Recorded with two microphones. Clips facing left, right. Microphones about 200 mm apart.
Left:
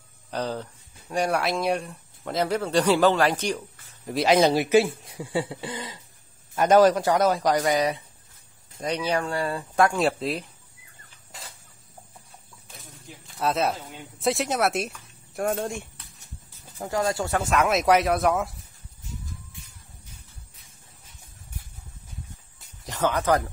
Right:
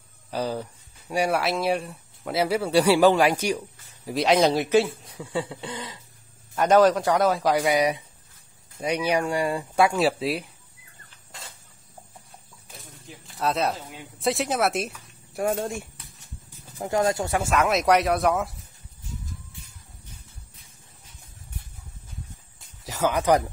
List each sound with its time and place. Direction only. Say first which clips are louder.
0.3 s speech: right 1 dB; 10° right (ahead or behind)
4.1 s speech: left 1 dB; centre (ahead or behind)
12.8 s bird: even; centre (ahead or behind)
13.7 s speech: even; 5° right (ahead or behind)
16.7 s speech: right 2 dB; 20° right (ahead or behind)
17.4 s speech: left 2 dB; centre (ahead or behind)
22.8 s speech: right 2 dB; 10° right (ahead or behind)